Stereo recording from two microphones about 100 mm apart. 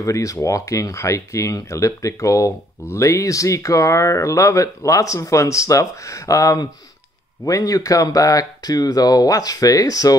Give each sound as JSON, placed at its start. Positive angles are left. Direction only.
{"t": 0.0, "sound": "speech", "side_deg": 35}